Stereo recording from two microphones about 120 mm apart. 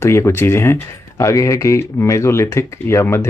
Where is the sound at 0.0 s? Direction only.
25° left (ahead or behind).